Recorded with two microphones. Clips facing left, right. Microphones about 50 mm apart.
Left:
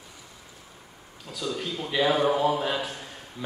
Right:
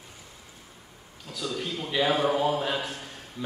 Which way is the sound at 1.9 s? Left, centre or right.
Centre.